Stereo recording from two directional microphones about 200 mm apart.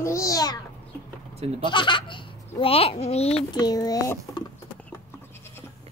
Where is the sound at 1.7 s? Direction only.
25° left (ahead or behind).